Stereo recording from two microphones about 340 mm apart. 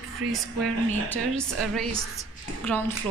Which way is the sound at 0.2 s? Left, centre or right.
Right.